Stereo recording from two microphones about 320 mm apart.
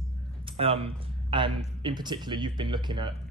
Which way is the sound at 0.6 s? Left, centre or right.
Centre.